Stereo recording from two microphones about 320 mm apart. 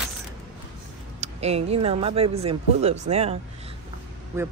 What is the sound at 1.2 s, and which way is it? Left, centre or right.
Speech, centre.